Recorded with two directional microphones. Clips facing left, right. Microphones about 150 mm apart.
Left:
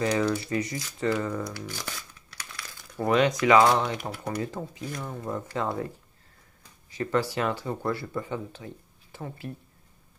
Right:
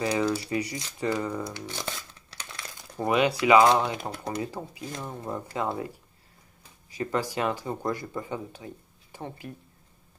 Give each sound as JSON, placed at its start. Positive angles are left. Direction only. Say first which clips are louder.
{"t": 0.0, "sound": "speech", "louder": "left 1 dB", "side_deg": -10}
{"t": 7.0, "sound": "speech", "louder": "left 1 dB", "side_deg": -15}